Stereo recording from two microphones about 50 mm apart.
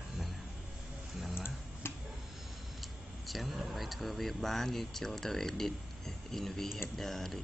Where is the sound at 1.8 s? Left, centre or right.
Left.